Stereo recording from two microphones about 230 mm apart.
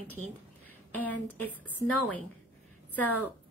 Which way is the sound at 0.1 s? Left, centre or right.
Centre.